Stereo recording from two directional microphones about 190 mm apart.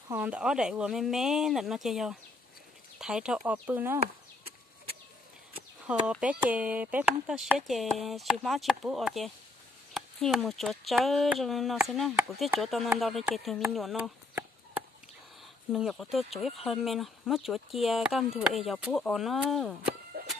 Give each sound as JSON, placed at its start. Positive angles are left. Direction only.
{"t": 0.1, "sound": "speech", "side_deg": -5}
{"t": 6.0, "sound": "speech", "side_deg": -5}
{"t": 13.7, "sound": "a sound", "side_deg": 0}
{"t": 15.7, "sound": "speech", "side_deg": 0}
{"t": 20.2, "sound": "chicken", "side_deg": -50}